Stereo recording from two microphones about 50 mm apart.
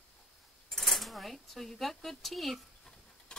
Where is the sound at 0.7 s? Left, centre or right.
Centre.